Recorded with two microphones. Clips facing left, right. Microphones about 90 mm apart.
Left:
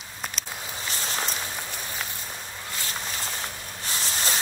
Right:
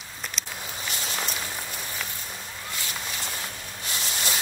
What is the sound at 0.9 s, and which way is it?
Walk, 35° left (ahead or behind).